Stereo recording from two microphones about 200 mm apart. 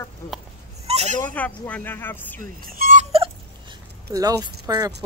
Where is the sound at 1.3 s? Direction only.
5° left (ahead or behind).